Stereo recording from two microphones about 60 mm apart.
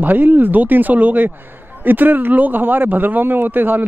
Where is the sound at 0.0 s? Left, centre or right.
Right.